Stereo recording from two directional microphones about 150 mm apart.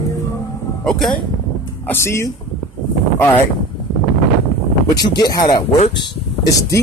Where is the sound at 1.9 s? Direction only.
15° left (ahead or behind).